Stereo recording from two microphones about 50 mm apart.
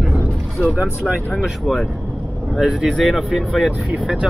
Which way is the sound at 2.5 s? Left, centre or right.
Centre.